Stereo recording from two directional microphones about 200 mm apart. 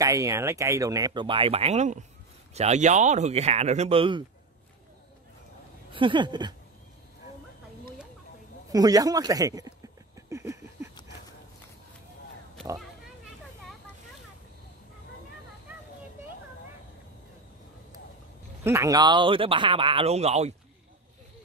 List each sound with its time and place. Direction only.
0.0 s speech: 15° right (ahead or behind)
5.9 s speech: 25° right (ahead or behind)
8.6 s a sound: 20° right (ahead or behind)
12.7 s oink: centre (ahead or behind)
18.6 s speech: 15° right (ahead or behind); by 20.5 s 30° right (ahead or behind)